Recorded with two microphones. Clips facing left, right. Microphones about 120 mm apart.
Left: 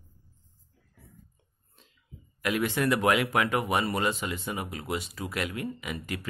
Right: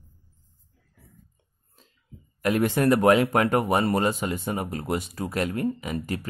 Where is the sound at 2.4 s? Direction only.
45° right (ahead or behind).